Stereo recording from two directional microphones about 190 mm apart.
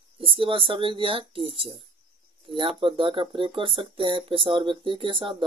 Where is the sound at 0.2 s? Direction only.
30° right (ahead or behind).